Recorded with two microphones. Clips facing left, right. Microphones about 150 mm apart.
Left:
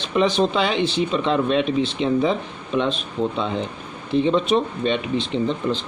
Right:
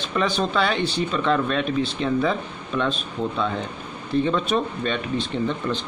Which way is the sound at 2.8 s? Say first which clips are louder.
Left 3 dB; 25° left (ahead or behind).